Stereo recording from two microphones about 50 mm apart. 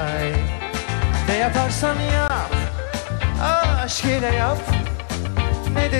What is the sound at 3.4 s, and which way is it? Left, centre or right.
Speech, centre.